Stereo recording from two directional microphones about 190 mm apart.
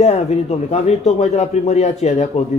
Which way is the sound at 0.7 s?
35° left (ahead or behind).